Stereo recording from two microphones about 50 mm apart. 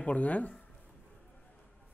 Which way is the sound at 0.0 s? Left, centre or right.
Left.